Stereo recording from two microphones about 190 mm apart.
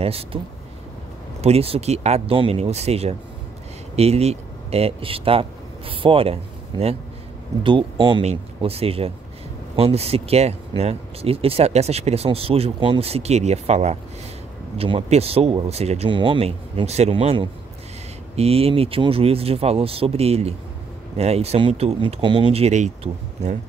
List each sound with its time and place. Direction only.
0.0 s speech: 30° right (ahead or behind)
1.4 s speech: 30° right (ahead or behind)